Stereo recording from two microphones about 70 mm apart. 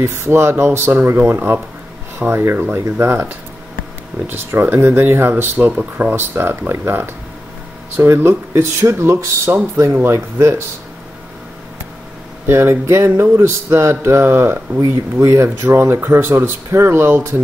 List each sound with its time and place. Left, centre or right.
0.0 s speech: right
4.3 s speech: right
12.4 s speech: right